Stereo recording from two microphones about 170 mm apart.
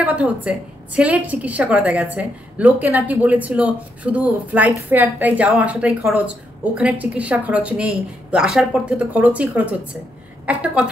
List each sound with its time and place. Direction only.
0.0 s a woman's voice: 5° right (ahead or behind)